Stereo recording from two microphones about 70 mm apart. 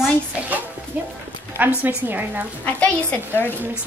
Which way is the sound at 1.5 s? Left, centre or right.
Right.